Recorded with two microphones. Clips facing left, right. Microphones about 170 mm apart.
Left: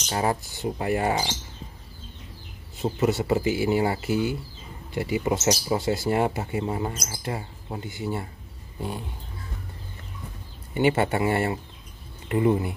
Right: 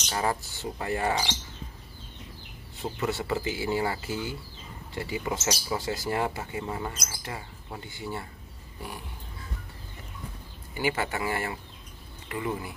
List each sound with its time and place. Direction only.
0.1 s speech: 20° left (ahead or behind)
2.8 s speech: 20° left (ahead or behind)
10.7 s speech: 25° left (ahead or behind)